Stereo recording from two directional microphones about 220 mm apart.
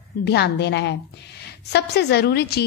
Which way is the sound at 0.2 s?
50° left (ahead or behind).